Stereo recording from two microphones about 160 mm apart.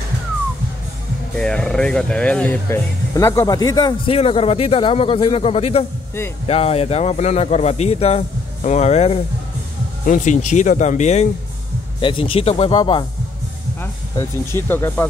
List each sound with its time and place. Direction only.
1.4 s speech: 5° left (ahead or behind); by 4.1 s 25° left (ahead or behind)
4.1 s a man's voice: 35° left (ahead or behind)
12.0 s a man's voice: 30° left (ahead or behind)
14.1 s speech: 15° left (ahead or behind)